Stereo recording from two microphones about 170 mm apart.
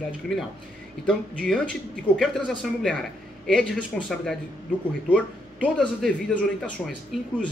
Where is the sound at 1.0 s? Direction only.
5° left (ahead or behind).